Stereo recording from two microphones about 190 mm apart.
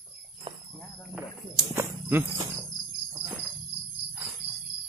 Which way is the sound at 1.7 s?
15° right (ahead or behind).